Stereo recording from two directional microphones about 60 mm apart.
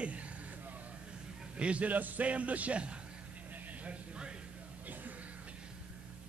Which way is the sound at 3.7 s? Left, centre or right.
Right.